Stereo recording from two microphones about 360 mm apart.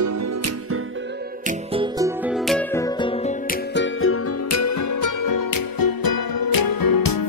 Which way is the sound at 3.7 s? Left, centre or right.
Left.